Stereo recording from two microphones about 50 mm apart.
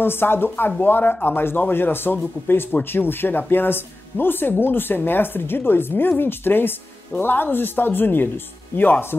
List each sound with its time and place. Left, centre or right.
0.0 s a man's voice: left